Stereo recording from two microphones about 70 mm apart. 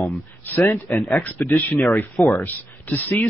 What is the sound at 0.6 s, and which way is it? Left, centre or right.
Speech, left.